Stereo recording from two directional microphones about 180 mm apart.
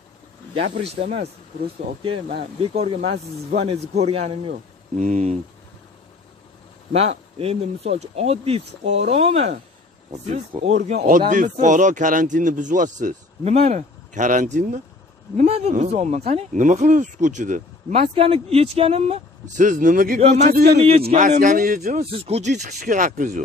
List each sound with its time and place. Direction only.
0.6 s speech: 40° right (ahead or behind)
2.0 s speech: 30° right (ahead or behind)
6.9 s speech: 35° right (ahead or behind); by 22.0 s 50° right (ahead or behind)
22.1 s speech: 35° right (ahead or behind)